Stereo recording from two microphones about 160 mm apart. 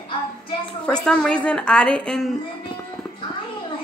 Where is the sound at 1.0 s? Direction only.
5° left (ahead or behind).